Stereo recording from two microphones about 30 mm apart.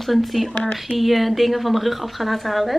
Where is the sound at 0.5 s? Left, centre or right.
Left.